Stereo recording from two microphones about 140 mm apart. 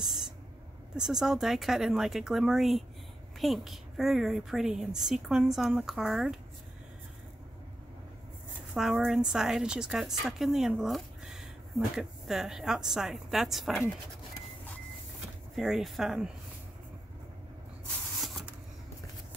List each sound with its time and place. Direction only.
0.0 s a sound: 5° right (ahead or behind)
0.9 s a woman's voice: 5° right (ahead or behind)
8.7 s a woman's voice: 5° right (ahead or behind)
15.5 s a woman's voice: centre (ahead or behind)